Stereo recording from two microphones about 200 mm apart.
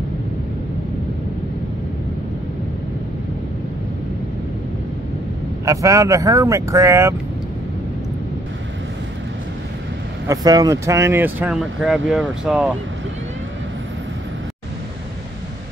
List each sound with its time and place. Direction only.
5.7 s speech: 15° right (ahead or behind)
10.2 s speech: 20° right (ahead or behind)